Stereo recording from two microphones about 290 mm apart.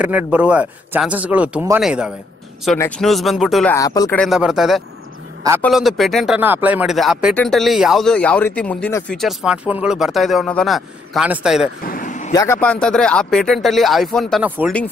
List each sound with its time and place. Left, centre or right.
0.0 s speech: centre
3.7 s speech: centre
11.8 s vehicle: left
12.4 s speech: centre